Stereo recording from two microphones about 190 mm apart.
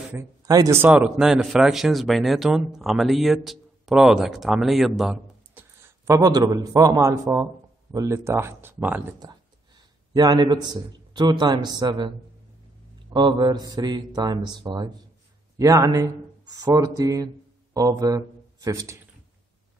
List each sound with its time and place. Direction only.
0.1 s speech: 15° right (ahead or behind)
9.2 s a man's voice: 20° right (ahead or behind)
13.1 s a man's voice: 25° right (ahead or behind)